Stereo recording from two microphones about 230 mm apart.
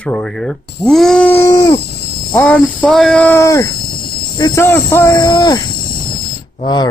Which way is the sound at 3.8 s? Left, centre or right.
Left.